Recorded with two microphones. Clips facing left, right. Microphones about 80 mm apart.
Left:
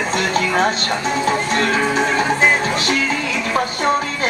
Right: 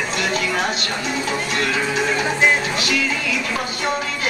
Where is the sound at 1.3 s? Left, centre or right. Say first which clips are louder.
Left 5 dB; left.